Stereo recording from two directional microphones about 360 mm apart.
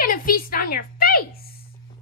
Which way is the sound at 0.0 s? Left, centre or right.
Left.